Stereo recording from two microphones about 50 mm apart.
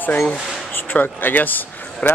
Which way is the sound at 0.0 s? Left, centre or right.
Left.